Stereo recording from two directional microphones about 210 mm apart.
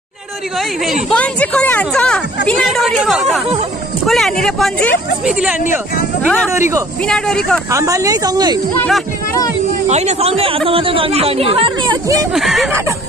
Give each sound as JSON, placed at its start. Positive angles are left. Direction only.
{"t": 1.1, "sound": "a woman's voice", "side_deg": 5}
{"t": 5.4, "sound": "speech", "side_deg": -5}
{"t": 6.2, "sound": "a woman's voice", "side_deg": 5}
{"t": 7.7, "sound": "speech", "side_deg": -15}
{"t": 8.7, "sound": "a woman's voice", "side_deg": 5}
{"t": 9.8, "sound": "speech", "side_deg": -30}
{"t": 12.4, "sound": "a woman's voice", "side_deg": 0}